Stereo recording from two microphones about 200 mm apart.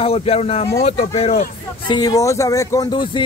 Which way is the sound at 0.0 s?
30° left (ahead or behind).